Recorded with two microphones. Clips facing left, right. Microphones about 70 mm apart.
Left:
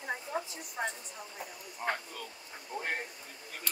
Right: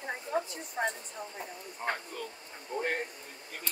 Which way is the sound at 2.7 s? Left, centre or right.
Right.